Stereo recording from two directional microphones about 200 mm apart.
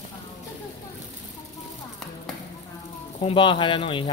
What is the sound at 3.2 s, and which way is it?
Speech, 25° left (ahead or behind).